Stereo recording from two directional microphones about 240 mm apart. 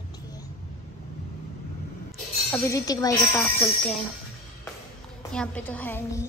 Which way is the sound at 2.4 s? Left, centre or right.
Centre.